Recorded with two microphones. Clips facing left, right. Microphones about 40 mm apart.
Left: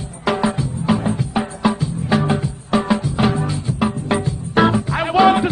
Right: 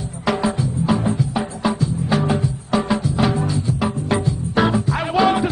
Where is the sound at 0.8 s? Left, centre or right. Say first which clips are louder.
Left 1 dB; centre.